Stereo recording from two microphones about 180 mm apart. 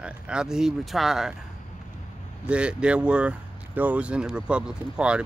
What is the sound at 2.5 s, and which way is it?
Speech, 5° right (ahead or behind).